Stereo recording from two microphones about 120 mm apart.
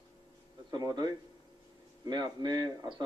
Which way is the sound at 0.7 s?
35° right (ahead or behind).